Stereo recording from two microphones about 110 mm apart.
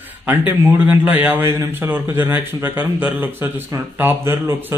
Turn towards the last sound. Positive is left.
turn(degrees=-20)  # may be behind; listen again after turning